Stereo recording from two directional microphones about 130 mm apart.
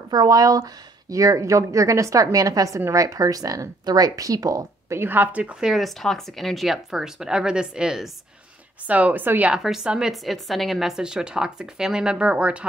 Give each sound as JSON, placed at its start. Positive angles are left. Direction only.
{"t": 0.1, "sound": "a woman's voice", "side_deg": -30}